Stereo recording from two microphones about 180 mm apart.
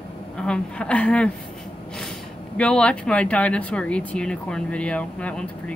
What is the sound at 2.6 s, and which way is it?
Speech, 5° left (ahead or behind).